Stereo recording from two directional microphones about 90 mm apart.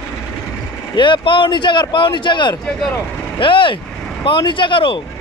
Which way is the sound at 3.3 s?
70° left (ahead or behind).